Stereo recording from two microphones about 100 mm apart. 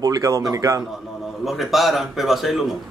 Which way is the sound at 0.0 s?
35° right (ahead or behind).